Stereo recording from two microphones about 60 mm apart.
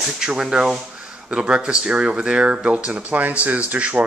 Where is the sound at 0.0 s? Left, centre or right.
Centre.